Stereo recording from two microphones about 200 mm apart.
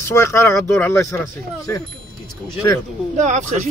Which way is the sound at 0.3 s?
10° left (ahead or behind).